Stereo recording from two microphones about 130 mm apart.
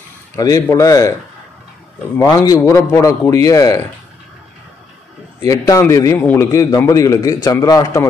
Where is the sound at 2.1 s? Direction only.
25° left (ahead or behind).